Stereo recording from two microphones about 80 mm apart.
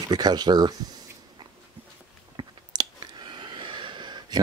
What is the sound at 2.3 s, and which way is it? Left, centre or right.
Chewing, right.